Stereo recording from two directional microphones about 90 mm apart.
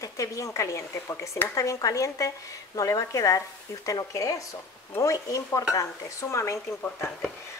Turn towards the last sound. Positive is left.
turn(degrees=20)  # may be behind; listen again after turning